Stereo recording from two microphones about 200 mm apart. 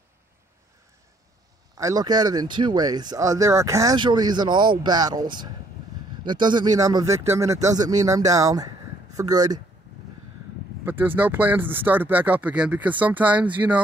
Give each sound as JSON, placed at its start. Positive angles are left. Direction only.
{"t": 1.8, "sound": "speech", "side_deg": -15}
{"t": 10.9, "sound": "speech", "side_deg": -10}